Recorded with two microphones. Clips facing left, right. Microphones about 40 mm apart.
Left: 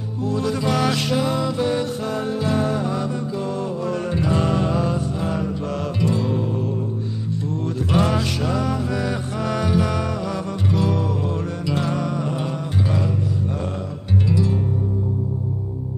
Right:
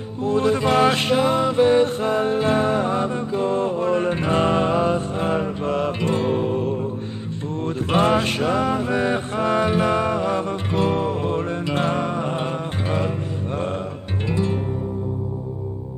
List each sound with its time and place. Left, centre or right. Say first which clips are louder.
0.2 s music: right 4 dB; right
14.3 s music: right 1 dB; right